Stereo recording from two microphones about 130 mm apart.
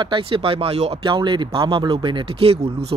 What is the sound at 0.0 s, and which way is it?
Speech, 40° right (ahead or behind).